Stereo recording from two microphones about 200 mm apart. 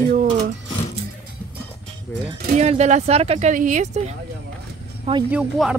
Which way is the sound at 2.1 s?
10° left (ahead or behind).